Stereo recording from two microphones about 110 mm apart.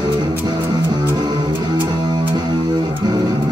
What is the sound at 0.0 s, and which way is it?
Music, 40° right (ahead or behind).